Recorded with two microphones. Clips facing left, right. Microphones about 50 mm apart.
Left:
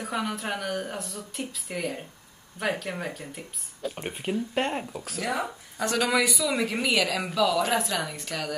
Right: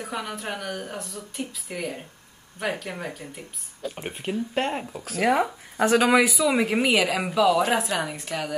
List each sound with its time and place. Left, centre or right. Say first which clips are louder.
0.0 s speech: left 1 dB; centre
5.2 s a woman's voice: right 8 dB; right; by 8.5 s centre